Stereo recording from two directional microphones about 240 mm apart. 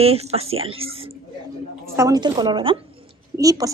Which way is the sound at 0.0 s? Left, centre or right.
Right.